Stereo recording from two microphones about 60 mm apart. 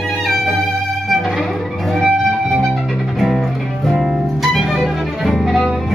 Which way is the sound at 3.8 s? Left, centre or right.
Centre.